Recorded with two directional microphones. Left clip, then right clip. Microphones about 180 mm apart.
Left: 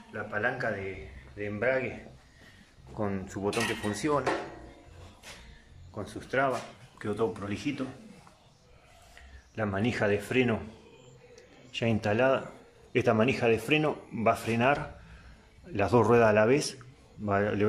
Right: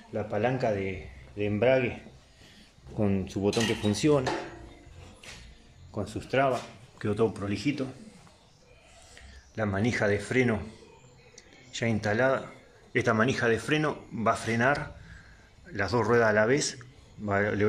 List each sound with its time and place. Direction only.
0.1 s speech: 15° right (ahead or behind)
3.0 s speech: 20° right (ahead or behind)
5.9 s speech: 5° right (ahead or behind)
9.1 s a man's voice: centre (ahead or behind)
15.7 s a man's voice: 15° left (ahead or behind)